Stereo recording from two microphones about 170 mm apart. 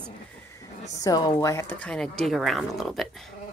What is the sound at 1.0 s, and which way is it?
Speech, 20° left (ahead or behind).